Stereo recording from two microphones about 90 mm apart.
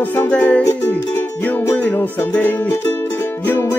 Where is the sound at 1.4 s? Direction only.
20° left (ahead or behind).